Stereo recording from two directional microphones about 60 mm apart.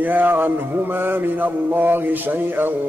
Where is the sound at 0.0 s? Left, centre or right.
Right.